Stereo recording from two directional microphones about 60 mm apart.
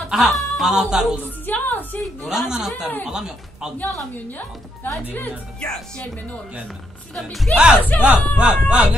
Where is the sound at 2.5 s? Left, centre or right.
Centre.